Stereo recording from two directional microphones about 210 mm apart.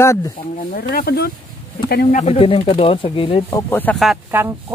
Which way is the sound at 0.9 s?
50° left (ahead or behind).